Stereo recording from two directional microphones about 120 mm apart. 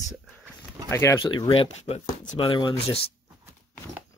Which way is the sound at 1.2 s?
45° left (ahead or behind).